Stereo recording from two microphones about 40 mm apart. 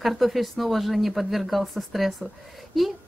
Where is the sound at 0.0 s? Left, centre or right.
Centre.